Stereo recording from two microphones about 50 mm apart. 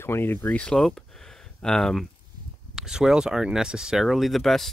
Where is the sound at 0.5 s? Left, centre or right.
Centre.